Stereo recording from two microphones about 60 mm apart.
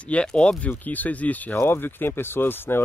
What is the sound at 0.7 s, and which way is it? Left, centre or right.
Speech, left.